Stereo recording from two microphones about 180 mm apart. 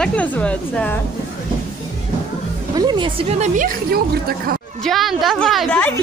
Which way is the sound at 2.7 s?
25° right (ahead or behind).